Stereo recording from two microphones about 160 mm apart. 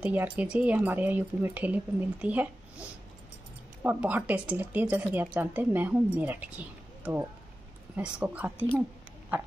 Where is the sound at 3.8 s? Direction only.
10° right (ahead or behind).